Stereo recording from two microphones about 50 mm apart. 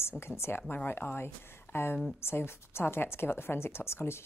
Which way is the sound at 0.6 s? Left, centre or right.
Left.